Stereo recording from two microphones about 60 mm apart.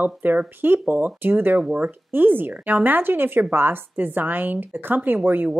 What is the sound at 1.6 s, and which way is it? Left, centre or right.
Speech, right.